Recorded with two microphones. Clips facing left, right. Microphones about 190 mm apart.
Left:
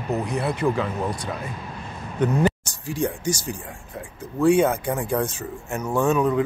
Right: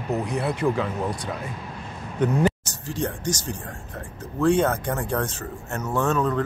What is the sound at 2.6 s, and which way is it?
Speech, 10° left (ahead or behind).